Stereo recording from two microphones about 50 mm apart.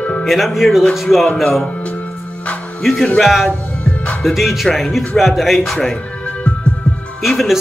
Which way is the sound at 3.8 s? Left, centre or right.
Left.